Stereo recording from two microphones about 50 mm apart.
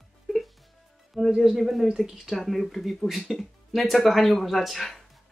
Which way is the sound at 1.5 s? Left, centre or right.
Centre.